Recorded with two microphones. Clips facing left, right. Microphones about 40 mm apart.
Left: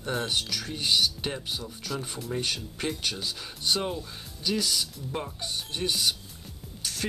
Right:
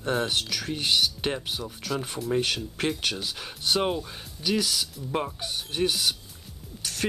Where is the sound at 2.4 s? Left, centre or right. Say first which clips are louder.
Right 3 dB; centre.